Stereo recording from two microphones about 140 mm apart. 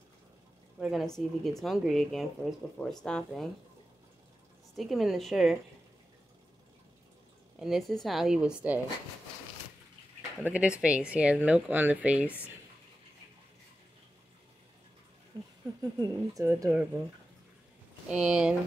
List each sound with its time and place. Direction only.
0.7 s speech: 5° right (ahead or behind)
4.7 s speech: centre (ahead or behind)
7.5 s speech: 5° right (ahead or behind)
10.4 s speech: 10° right (ahead or behind)
16.1 s speech: 25° right (ahead or behind)
18.1 s speech: 5° right (ahead or behind)